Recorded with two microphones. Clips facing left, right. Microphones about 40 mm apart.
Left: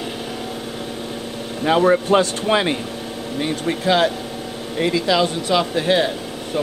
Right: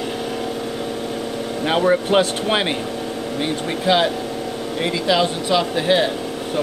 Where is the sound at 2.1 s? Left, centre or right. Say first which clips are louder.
Even; right.